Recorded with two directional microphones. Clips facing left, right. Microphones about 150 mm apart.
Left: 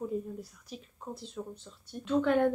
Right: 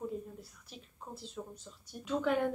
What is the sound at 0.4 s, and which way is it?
Speech, centre (ahead or behind).